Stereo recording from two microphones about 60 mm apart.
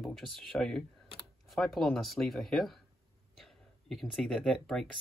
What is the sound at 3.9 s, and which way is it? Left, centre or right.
Speech, centre.